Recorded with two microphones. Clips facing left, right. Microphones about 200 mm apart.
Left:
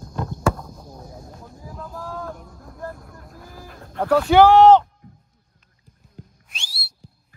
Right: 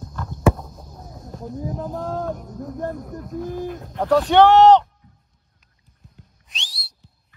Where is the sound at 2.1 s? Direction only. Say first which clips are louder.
Right 6 dB; 45° right (ahead or behind).